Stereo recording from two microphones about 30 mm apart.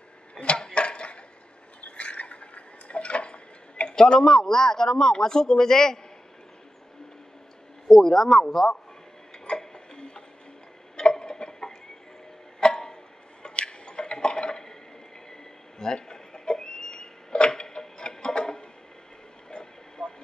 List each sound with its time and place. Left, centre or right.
0.3 s a sound: left
3.9 s speech: left
7.9 s speech: centre
9.5 s tick-tock: left
11.0 s a sound: left
12.5 s music: left
13.4 s tick-tock: left
15.8 s a sound: left
17.6 s music: left
19.5 s vehicle: left